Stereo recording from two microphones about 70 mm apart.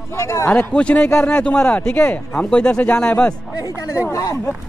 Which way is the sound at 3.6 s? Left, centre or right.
Left.